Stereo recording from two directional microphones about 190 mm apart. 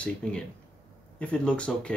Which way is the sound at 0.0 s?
5° left (ahead or behind).